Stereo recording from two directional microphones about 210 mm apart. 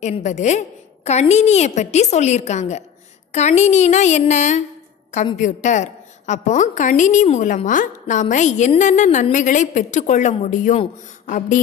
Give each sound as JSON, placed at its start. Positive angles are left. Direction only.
{"t": 0.0, "sound": "a woman's voice", "side_deg": 35}